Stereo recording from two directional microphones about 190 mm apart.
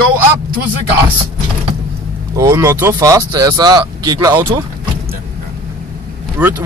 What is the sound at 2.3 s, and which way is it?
Speech, 15° right (ahead or behind).